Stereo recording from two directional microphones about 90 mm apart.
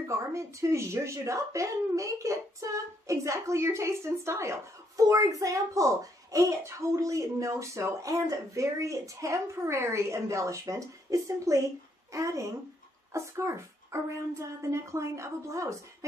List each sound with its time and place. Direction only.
0.1 s speech: 35° right (ahead or behind)